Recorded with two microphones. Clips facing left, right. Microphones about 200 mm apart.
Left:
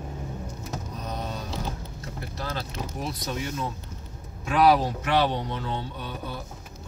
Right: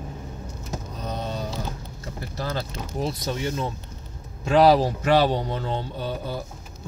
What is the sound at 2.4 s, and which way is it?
Speech, 30° right (ahead or behind).